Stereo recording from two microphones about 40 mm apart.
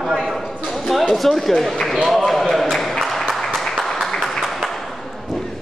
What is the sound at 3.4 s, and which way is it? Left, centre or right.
Applause, centre.